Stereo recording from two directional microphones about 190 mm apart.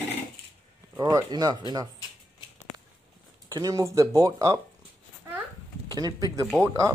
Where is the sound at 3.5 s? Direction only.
20° right (ahead or behind).